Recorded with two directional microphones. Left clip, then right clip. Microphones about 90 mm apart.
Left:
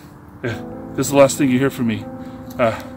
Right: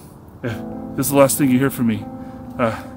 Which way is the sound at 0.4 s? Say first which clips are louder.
Left 1 dB; 5° right (ahead or behind).